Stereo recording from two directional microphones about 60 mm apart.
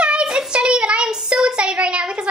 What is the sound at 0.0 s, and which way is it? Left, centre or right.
A child's voice, centre.